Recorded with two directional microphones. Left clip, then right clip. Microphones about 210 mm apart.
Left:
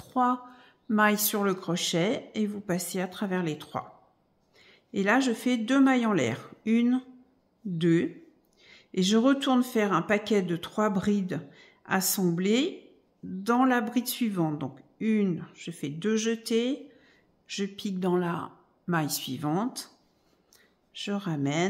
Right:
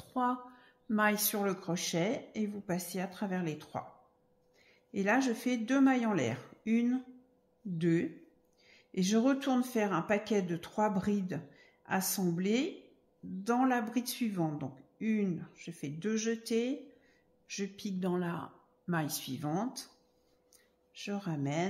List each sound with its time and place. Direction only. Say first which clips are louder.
0.1 s a woman's voice: left 7 dB; 15° left (ahead or behind)